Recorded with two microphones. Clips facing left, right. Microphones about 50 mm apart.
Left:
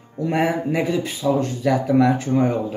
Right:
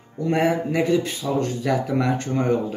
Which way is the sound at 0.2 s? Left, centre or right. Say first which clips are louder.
Even; centre.